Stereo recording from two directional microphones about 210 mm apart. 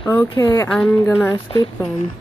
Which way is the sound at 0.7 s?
5° left (ahead or behind).